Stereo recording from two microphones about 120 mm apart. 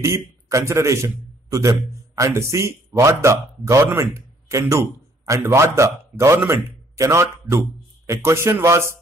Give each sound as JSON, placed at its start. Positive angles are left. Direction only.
{"t": 0.0, "sound": "a man's voice", "side_deg": -25}